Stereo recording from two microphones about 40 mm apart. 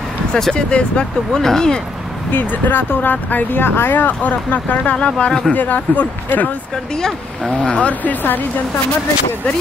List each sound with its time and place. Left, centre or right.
0.6 s speech: left
1.3 s speech: centre
2.3 s speech: left
4.9 s speech: left
5.5 s speech: left
7.0 s speech: centre
7.5 s speech: left